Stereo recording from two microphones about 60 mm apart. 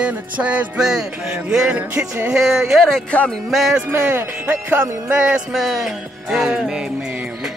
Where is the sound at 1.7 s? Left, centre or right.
Right.